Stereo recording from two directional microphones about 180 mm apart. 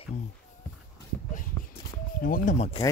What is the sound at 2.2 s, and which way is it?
Speech, 50° left (ahead or behind).